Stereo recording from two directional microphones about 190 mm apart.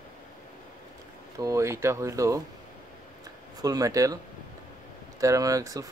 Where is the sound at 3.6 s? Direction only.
20° right (ahead or behind).